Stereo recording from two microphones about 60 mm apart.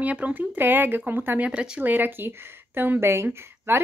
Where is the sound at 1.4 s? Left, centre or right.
Centre.